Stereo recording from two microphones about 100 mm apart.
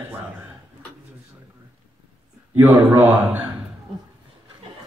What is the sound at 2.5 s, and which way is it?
Speech, 20° right (ahead or behind).